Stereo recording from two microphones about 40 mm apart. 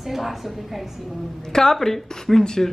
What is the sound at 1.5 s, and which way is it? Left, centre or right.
A woman's voice, centre.